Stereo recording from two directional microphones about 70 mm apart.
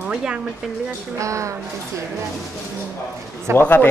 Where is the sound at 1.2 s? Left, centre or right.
Right.